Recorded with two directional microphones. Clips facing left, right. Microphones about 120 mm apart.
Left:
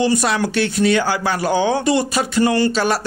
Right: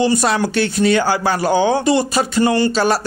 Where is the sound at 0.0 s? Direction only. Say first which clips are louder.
Right 2 dB; 35° right (ahead or behind).